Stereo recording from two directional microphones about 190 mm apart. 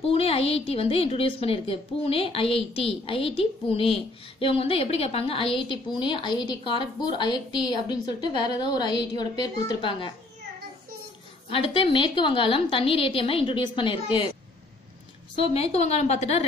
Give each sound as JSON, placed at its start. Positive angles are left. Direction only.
{"t": 0.1, "sound": "a woman's voice", "side_deg": 30}
{"t": 11.4, "sound": "a woman's voice", "side_deg": 30}
{"t": 15.5, "sound": "a woman's voice", "side_deg": 35}